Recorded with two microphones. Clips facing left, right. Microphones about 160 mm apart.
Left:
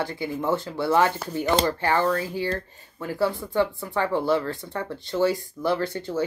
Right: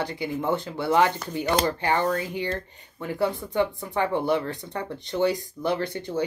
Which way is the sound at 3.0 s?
20° right (ahead or behind).